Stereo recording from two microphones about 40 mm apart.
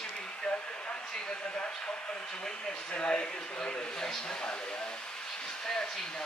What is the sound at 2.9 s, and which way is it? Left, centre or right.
Speech, left.